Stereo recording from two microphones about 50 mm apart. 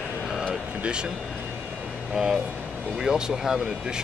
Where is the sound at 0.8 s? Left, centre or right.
Centre.